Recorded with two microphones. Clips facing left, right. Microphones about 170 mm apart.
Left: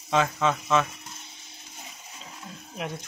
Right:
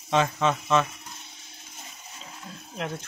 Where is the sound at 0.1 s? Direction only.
5° left (ahead or behind).